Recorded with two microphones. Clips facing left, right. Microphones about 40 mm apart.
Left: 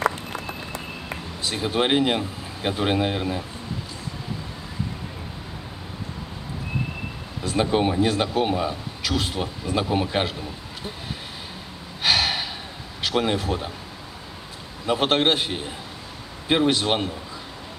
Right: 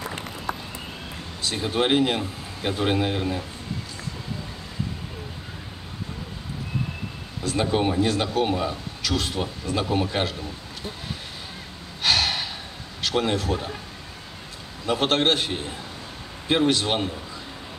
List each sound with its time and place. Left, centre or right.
1.4 s speech: centre
7.4 s speech: centre
12.0 s gasp: centre
13.0 s speech: centre
14.9 s speech: centre